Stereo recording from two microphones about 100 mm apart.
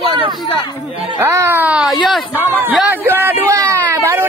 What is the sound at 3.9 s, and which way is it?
Baby cry, 25° right (ahead or behind).